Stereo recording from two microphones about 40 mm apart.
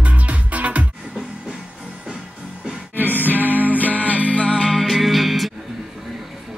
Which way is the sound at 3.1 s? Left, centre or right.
Left.